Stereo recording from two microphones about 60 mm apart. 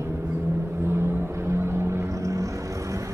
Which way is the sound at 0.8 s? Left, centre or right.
Right.